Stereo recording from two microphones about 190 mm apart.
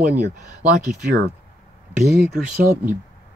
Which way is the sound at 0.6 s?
45° right (ahead or behind).